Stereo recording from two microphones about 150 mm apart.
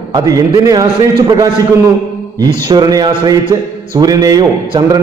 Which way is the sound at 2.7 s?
25° right (ahead or behind).